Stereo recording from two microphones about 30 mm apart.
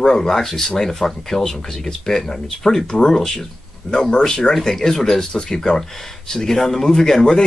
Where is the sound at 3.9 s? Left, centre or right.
Left.